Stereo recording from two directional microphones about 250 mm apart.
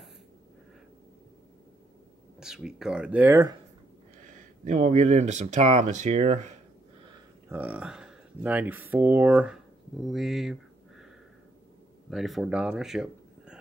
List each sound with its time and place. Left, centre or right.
2.4 s speech: centre
4.6 s speech: right
7.1 s a sound: centre
8.9 s speech: centre
12.1 s speech: centre